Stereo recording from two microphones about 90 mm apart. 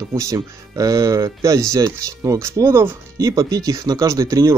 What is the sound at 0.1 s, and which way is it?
Speech, 35° right (ahead or behind).